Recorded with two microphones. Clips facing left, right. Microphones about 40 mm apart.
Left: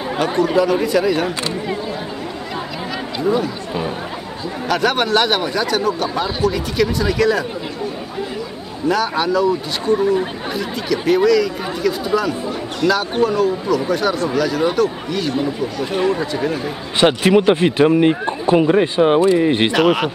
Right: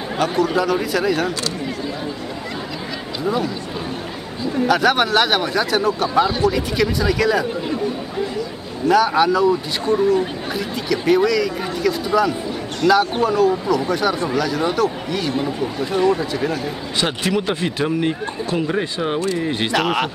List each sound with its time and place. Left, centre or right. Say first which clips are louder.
0.2 s speech: left 2 dB; centre
3.3 s speech: left 3 dB; centre
4.6 s speech: even; centre
8.8 s speech: right 3 dB; centre
17.0 s speech: left 8 dB; left
19.7 s speech: left 4 dB; centre